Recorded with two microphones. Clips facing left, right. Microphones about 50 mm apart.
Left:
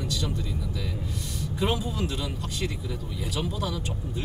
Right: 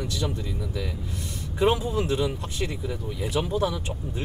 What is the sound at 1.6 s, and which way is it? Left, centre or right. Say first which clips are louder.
Speech: right 5 dB; right.